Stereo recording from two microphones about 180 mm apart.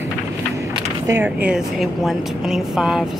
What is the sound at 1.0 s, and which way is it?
A woman's voice, 10° right (ahead or behind).